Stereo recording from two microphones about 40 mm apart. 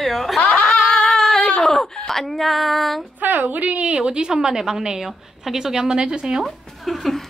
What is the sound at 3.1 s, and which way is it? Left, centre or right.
Speech, right.